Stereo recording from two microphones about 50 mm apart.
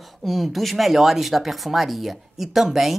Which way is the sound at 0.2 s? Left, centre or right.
Centre.